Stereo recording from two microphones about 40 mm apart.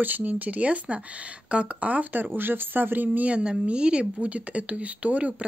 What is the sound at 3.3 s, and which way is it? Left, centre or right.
Speech, right.